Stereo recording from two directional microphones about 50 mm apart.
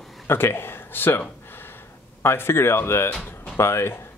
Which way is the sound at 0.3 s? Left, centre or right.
Left.